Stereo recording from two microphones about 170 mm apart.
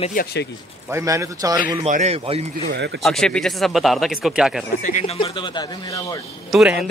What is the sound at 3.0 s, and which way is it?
Speech, centre (ahead or behind).